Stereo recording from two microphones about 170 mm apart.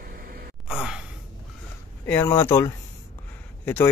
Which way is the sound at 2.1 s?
15° left (ahead or behind).